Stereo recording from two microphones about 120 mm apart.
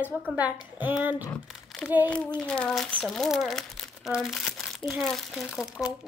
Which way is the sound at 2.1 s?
10° left (ahead or behind).